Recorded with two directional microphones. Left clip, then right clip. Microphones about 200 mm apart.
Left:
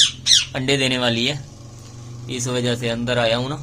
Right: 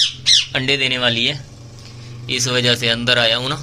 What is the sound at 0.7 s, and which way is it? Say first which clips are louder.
Speech: right 2 dB; 20° left (ahead or behind).